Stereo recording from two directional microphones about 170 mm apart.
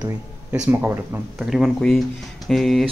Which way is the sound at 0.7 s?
10° right (ahead or behind).